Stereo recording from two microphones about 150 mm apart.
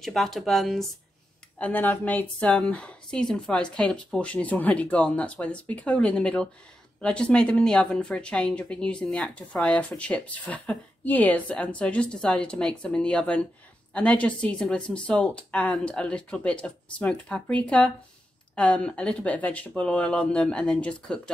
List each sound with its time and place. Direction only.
0.0 s speech: centre (ahead or behind)
1.6 s speech: 10° left (ahead or behind)